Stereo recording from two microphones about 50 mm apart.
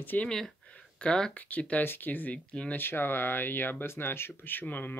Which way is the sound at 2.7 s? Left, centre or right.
Left.